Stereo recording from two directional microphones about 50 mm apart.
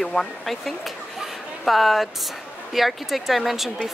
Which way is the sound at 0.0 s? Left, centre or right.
Centre.